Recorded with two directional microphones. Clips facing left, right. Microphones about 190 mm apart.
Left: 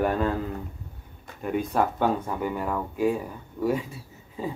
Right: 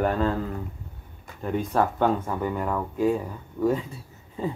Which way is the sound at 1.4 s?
15° left (ahead or behind).